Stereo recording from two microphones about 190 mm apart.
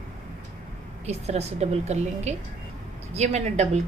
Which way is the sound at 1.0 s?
35° right (ahead or behind).